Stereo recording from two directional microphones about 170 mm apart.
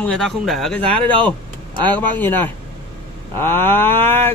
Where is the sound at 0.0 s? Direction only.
5° left (ahead or behind).